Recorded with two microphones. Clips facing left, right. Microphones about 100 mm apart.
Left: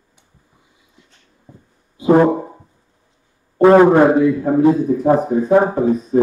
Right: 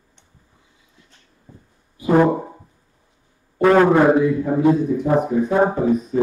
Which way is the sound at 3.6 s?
25° left (ahead or behind).